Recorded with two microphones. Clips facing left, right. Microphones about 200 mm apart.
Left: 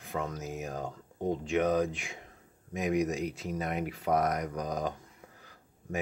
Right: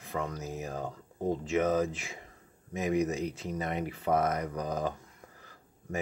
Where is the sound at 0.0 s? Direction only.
Centre (ahead or behind).